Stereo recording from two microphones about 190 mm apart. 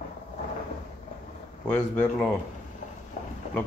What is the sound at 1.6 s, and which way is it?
Speech, 5° left (ahead or behind).